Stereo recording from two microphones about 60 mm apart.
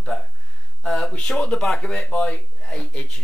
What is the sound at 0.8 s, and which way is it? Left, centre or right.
Speech, centre.